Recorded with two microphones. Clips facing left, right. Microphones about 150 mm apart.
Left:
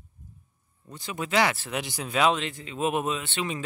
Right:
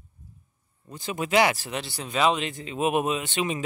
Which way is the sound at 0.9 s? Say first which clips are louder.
Right 3 dB; 20° right (ahead or behind).